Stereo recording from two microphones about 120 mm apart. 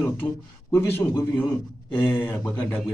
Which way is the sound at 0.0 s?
15° left (ahead or behind).